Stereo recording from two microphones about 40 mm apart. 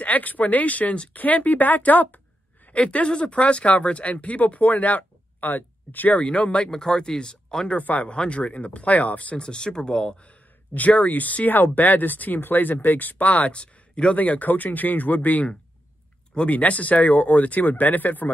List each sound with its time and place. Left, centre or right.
0.0 s a woman's voice: left
2.7 s speech: left
6.1 s speech: left
7.7 s speech: left
8.1 s speech: left
9.4 s speech: left
10.7 s speech: left
14.1 s speech: left